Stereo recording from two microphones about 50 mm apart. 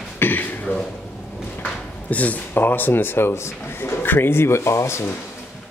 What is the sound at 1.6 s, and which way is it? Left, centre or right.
Speech, left.